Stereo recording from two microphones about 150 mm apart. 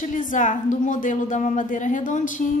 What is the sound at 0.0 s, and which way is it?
A woman's voice, 60° left (ahead or behind).